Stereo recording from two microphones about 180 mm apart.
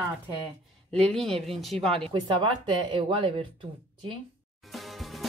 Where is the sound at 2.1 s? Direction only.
25° right (ahead or behind).